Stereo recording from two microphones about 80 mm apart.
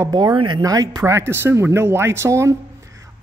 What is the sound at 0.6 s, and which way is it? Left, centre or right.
Speech, right.